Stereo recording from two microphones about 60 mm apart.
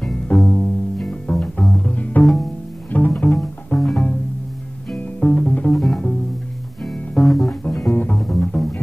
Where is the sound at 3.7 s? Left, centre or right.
Centre.